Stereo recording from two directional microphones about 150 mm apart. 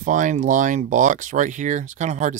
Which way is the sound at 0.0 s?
60° right (ahead or behind).